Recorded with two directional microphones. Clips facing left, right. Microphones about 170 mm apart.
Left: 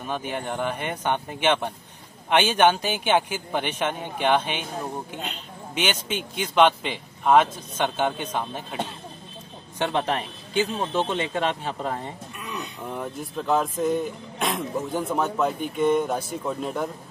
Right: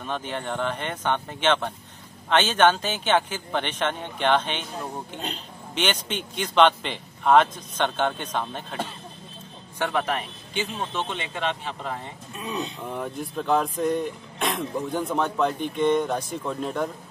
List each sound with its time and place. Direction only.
0.0 s speech: 10° left (ahead or behind)
5.8 s speech: 5° left (ahead or behind)
9.8 s a man's voice: 30° left (ahead or behind)
12.4 s speech: 30° right (ahead or behind)
12.8 s speech: centre (ahead or behind)